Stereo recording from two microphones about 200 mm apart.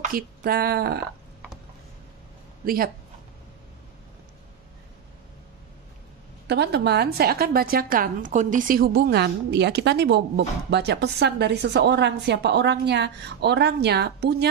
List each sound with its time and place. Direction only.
0.0 s speech: 50° right (ahead or behind)
2.6 s speech: 45° right (ahead or behind)
6.4 s a woman's voice: 55° right (ahead or behind)